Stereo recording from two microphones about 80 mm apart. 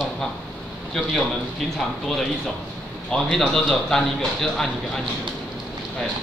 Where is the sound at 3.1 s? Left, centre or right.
Centre.